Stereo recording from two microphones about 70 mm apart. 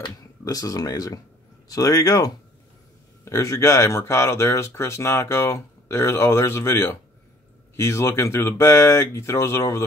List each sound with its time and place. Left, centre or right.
0.5 s speech: left